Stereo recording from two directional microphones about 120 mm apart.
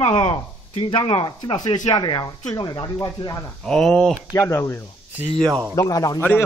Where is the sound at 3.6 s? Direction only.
5° left (ahead or behind).